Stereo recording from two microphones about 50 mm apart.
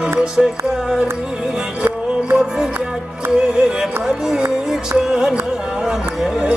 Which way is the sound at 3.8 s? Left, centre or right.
Centre.